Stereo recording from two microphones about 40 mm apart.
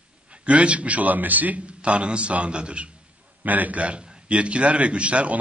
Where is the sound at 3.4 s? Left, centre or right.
Right.